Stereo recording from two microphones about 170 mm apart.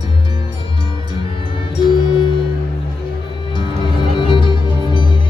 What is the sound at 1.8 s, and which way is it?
Music, 30° left (ahead or behind).